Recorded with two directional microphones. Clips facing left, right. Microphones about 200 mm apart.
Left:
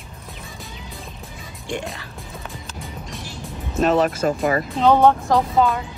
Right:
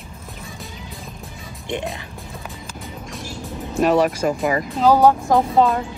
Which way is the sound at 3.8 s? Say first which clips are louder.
Right 1 dB; 10° right (ahead or behind).